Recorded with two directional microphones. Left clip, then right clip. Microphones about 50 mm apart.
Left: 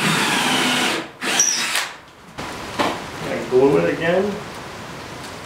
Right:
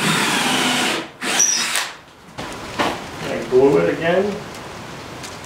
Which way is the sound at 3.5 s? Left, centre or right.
Left.